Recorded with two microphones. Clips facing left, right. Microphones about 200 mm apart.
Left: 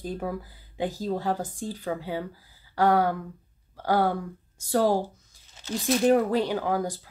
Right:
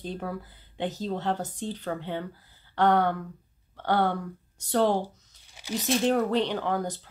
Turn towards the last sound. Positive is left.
turn(degrees=5)  # may be behind; listen again after turning